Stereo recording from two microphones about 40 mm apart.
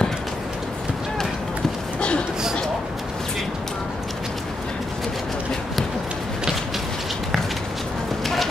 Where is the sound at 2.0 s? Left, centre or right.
Left.